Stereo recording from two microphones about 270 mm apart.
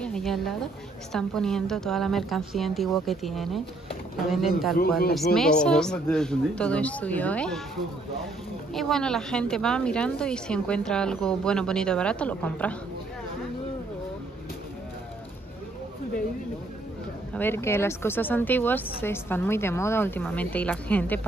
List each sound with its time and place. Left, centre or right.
0.0 s a woman's voice: centre
4.7 s speech: left
5.1 s speech: centre
8.7 s speech: centre
17.3 s speech: centre